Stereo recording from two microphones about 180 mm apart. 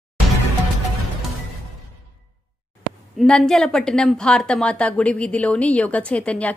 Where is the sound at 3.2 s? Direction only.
5° left (ahead or behind).